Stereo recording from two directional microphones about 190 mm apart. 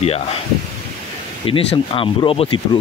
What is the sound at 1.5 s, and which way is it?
Speech, 30° left (ahead or behind).